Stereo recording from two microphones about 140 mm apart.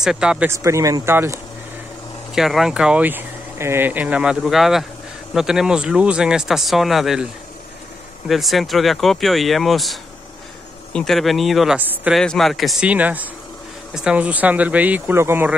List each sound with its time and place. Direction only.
0.0 s speech: 5° right (ahead or behind)
0.5 s speech: 20° right (ahead or behind)
2.3 s speech: centre (ahead or behind)
8.3 s speech: centre (ahead or behind)
12.9 s speech: 10° right (ahead or behind)